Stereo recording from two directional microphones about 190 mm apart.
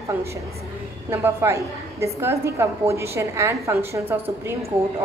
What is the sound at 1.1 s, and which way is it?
A woman's voice, 15° right (ahead or behind).